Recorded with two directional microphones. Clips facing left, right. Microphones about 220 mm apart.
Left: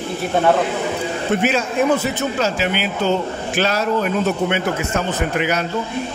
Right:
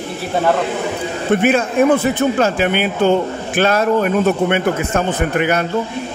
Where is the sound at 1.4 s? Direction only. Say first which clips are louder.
Right 6 dB; 55° right (ahead or behind).